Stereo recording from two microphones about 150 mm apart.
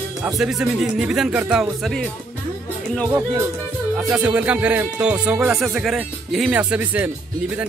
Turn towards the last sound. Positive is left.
turn(degrees=-10)  # may be behind; listen again after turning